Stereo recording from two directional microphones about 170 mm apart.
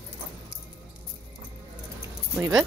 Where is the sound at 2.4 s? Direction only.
20° right (ahead or behind).